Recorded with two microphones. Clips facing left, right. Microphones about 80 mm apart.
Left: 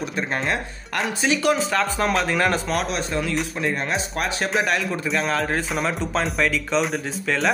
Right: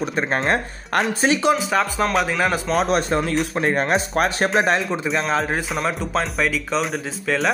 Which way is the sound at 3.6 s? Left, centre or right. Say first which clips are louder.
Right 5 dB; right.